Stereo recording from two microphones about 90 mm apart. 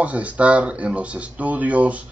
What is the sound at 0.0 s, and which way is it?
Speech, 15° right (ahead or behind).